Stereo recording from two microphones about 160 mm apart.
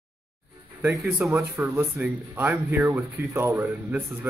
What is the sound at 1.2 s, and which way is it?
Speech, 10° right (ahead or behind).